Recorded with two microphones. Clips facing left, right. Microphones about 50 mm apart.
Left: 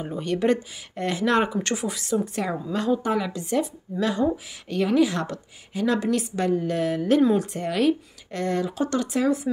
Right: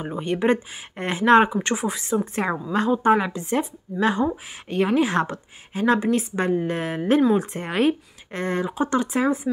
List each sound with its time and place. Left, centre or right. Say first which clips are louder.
0.0 s speech: right 1 dB; right
1.5 s speech: right 2 dB; centre